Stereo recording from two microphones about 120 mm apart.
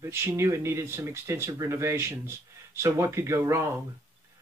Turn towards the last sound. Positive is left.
turn(degrees=-20)  # may be behind; listen again after turning